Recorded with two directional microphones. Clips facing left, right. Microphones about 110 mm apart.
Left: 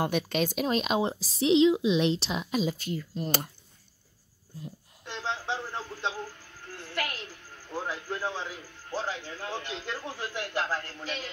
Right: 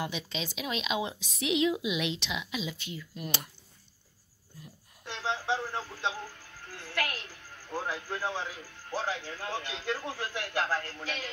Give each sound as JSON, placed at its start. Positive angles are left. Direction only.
{"t": 0.0, "sound": "a woman's voice", "side_deg": 50}
{"t": 5.0, "sound": "radio", "side_deg": -10}
{"t": 6.7, "sound": "a sound", "side_deg": -5}
{"t": 7.7, "sound": "a man's voice", "side_deg": -5}